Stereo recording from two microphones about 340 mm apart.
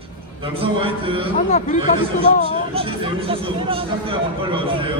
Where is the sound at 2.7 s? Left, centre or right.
Centre.